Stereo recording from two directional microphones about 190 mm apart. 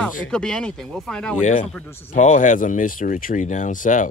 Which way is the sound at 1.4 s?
35° left (ahead or behind).